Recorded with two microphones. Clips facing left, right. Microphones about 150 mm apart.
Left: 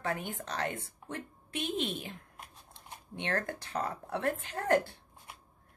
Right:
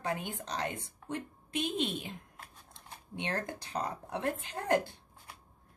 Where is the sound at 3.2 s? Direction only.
20° right (ahead or behind).